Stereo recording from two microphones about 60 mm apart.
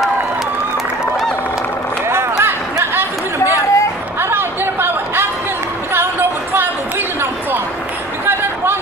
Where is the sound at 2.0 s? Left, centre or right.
Right.